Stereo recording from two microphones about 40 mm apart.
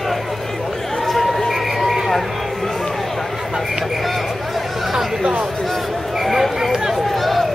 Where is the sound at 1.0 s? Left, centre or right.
Centre.